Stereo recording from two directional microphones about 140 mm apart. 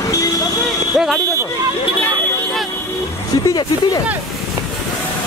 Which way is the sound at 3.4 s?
25° left (ahead or behind).